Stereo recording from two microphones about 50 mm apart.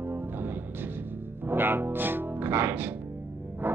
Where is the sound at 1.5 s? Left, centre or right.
Right.